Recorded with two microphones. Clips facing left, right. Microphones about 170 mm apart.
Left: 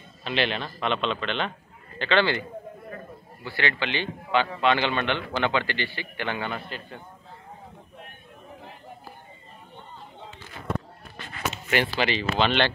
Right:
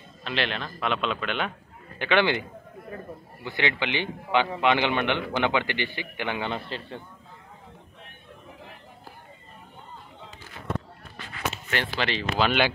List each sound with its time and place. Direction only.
0.2 s a man's voice: centre (ahead or behind); by 2.4 s 15° right (ahead or behind)
3.4 s a man's voice: 15° right (ahead or behind)
12.0 s a man's voice: centre (ahead or behind)